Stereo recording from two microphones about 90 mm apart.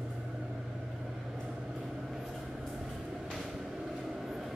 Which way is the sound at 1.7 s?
5° right (ahead or behind).